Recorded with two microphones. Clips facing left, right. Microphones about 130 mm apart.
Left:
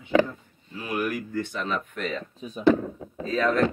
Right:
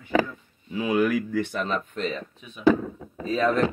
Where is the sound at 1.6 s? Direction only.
25° right (ahead or behind).